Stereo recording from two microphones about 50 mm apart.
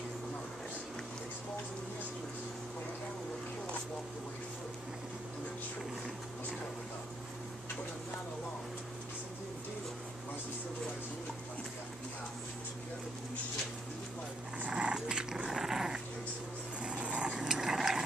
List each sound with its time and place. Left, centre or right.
14.7 s dog: centre
16.8 s a sound: right
17.3 s dog: centre